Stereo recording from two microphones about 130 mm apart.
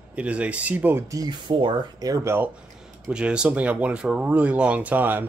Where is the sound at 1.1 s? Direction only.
35° right (ahead or behind).